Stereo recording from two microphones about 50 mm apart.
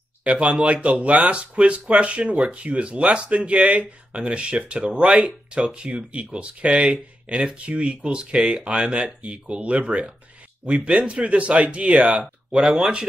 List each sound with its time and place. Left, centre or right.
0.2 s speech: right